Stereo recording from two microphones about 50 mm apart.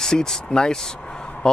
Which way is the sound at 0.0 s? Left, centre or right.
Centre.